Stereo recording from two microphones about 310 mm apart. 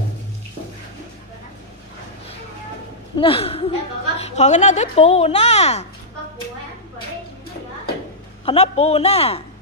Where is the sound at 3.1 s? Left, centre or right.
Centre.